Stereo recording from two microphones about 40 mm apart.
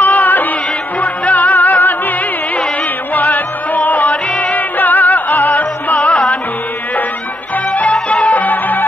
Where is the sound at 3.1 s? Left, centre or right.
Left.